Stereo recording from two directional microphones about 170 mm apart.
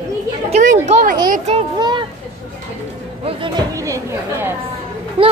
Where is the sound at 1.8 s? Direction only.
25° right (ahead or behind).